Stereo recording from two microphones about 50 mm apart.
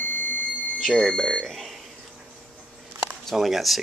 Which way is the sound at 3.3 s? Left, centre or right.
Centre.